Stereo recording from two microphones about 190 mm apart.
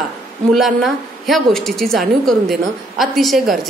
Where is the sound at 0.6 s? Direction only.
Centre (ahead or behind).